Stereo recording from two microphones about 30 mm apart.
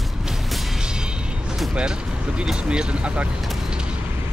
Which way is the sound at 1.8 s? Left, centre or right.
Right.